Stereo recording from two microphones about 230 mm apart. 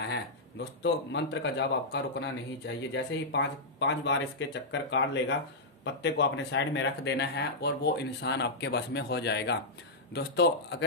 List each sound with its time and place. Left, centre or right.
0.1 s speech: left